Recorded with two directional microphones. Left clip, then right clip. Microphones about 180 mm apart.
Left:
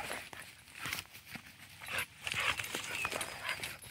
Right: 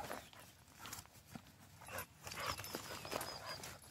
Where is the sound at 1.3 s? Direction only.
10° left (ahead or behind).